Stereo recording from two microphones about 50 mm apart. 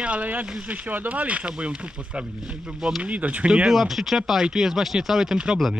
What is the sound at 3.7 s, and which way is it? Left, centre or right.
Speech, centre.